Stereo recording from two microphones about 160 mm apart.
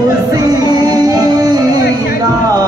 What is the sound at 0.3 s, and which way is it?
Music, 25° right (ahead or behind).